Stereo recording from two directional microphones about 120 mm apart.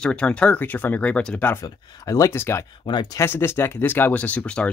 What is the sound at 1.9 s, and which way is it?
Speech, 30° left (ahead or behind).